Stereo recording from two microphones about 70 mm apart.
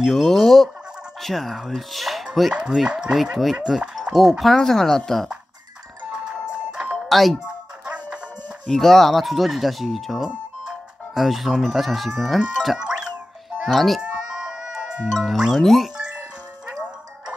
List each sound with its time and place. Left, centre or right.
0.0 s speech: centre
6.9 s music: centre
7.8 s music: centre
8.6 s speech: centre
14.3 s a sound: centre
15.1 s speech: centre